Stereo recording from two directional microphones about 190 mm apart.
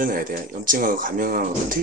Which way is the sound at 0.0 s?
45° right (ahead or behind).